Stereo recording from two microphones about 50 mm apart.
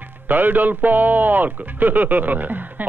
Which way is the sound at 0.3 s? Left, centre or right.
Right.